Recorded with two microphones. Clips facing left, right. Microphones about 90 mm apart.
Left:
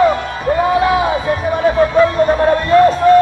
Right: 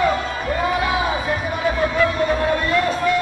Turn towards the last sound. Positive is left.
turn(degrees=40)  # may be behind; listen again after turning